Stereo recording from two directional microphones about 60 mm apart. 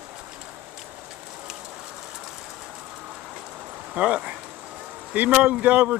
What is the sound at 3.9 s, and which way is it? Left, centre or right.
Speech, right.